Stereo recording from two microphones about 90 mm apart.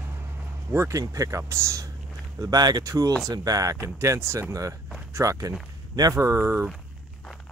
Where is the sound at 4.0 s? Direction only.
30° right (ahead or behind).